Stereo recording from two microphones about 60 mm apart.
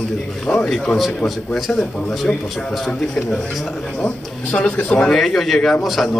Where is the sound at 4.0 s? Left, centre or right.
Centre.